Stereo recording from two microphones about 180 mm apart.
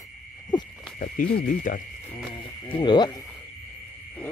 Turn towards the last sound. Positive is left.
turn(degrees=25)  # may be behind; listen again after turning